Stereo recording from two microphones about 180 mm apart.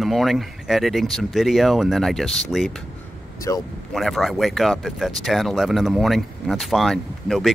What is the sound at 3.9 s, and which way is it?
Speech, centre (ahead or behind).